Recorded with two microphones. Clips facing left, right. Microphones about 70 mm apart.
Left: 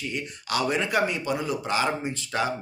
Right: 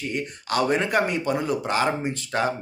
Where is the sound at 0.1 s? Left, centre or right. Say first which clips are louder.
Right 4 dB; right.